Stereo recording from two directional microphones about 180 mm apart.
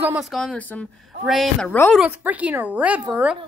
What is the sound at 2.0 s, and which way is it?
A woman's voice, 10° right (ahead or behind).